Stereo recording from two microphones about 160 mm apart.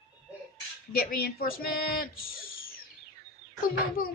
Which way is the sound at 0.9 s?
65° left (ahead or behind).